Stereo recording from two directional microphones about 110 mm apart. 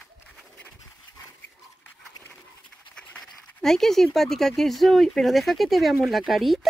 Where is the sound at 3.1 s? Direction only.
5° left (ahead or behind).